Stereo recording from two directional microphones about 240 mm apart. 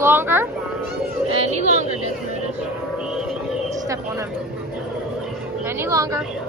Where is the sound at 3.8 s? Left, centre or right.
Centre.